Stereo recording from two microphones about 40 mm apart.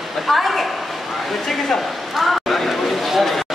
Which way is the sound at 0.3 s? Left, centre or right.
Centre.